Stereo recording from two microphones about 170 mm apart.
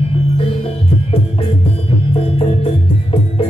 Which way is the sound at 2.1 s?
35° left (ahead or behind).